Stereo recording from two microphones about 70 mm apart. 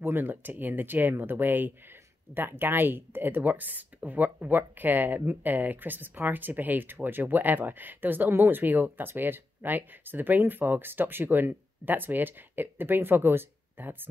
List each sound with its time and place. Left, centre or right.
0.0 s speech: right